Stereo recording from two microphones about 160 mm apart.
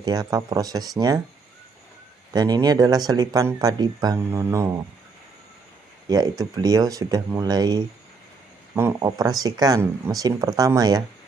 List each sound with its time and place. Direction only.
0.0 s speech: 25° right (ahead or behind)
2.3 s speech: 25° right (ahead or behind)
6.0 s speech: 25° right (ahead or behind)